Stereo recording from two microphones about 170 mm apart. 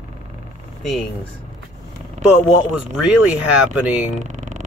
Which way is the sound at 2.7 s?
5° right (ahead or behind).